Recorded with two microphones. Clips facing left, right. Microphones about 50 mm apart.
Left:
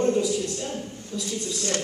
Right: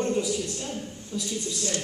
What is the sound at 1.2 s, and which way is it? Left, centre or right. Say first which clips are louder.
Speech: left 3 dB; left.